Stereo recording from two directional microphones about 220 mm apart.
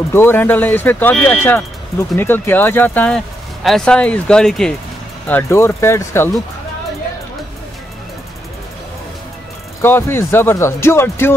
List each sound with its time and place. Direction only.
0.1 s speech: 10° left (ahead or behind)
9.8 s speech: 10° left (ahead or behind)